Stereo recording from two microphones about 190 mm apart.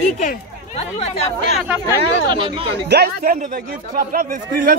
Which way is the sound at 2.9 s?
55° right (ahead or behind).